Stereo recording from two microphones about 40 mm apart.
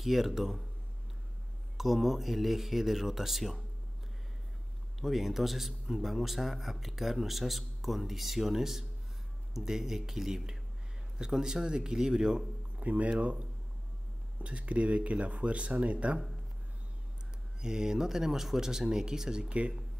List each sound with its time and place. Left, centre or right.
0.0 s a man's voice: centre
1.8 s speech: centre
5.0 s a man's voice: centre
12.7 s speech: right
17.6 s speech: centre